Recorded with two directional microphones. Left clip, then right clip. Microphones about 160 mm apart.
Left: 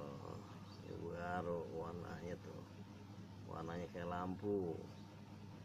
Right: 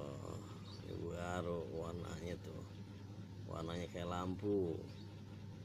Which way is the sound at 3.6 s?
30° right (ahead or behind).